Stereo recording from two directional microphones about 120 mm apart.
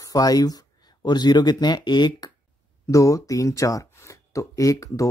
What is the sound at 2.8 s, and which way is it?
Speech, 25° left (ahead or behind).